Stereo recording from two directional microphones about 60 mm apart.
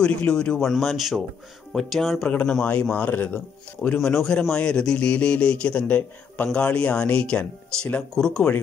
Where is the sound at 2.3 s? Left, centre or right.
Left.